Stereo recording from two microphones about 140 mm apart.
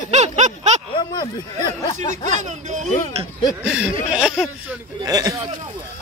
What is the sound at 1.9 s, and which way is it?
Speech, 60° right (ahead or behind).